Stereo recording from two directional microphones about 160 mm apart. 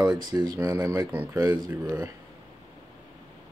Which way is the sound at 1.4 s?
25° right (ahead or behind).